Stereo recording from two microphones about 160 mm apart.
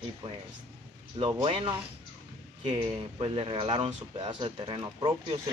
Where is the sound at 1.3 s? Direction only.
30° right (ahead or behind).